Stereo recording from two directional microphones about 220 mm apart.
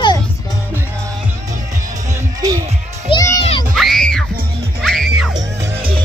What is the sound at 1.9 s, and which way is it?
Music, 15° right (ahead or behind).